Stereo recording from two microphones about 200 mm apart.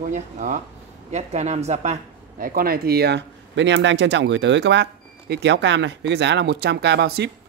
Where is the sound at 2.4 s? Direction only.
45° right (ahead or behind).